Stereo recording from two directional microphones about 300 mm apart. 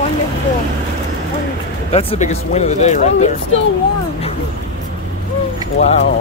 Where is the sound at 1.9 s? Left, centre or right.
Centre.